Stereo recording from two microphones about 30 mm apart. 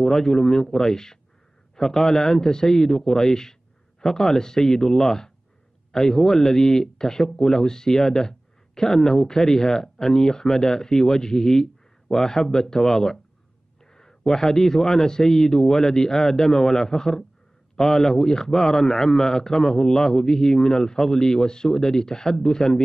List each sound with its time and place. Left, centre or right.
0.0 s a man's voice: centre